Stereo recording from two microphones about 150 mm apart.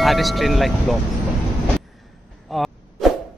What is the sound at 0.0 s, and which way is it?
Speech, centre (ahead or behind).